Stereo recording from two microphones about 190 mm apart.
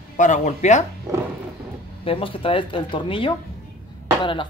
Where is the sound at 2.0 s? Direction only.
30° left (ahead or behind).